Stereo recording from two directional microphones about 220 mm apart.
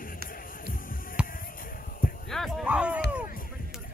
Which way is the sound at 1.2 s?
40° left (ahead or behind).